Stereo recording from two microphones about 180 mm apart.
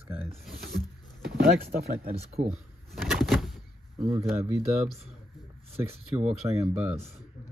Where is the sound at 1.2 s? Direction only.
65° right (ahead or behind).